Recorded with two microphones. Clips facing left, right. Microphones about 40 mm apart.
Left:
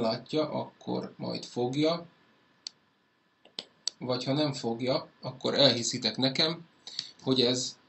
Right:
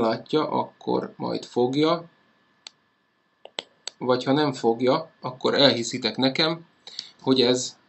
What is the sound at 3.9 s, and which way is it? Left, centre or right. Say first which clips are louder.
Speech: right 9 dB; right.